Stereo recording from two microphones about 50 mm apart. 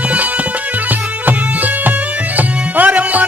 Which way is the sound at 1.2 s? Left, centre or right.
Right.